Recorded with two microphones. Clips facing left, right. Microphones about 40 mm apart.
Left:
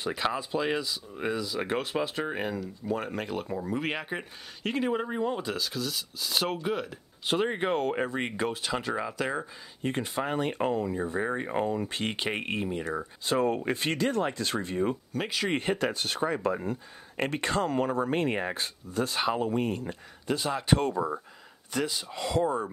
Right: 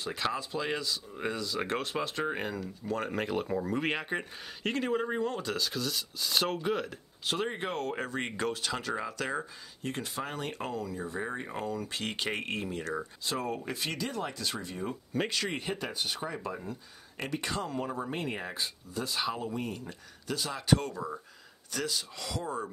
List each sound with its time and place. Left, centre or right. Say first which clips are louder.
0.1 s speech: left 3 dB; centre
7.2 s speech: left 5 dB; centre
9.8 s speech: left 5 dB; left
11.1 s speech: left 7 dB; left
13.2 s speech: left 11 dB; left
15.1 s speech: right 3 dB; centre
15.5 s speech: left 7 dB; left